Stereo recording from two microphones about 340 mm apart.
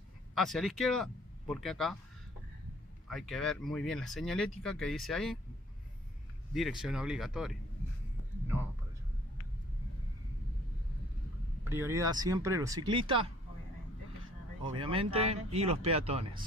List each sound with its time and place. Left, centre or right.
0.3 s speech: centre
3.1 s speech: centre
6.5 s speech: centre
11.6 s speech: centre
14.6 s speech: centre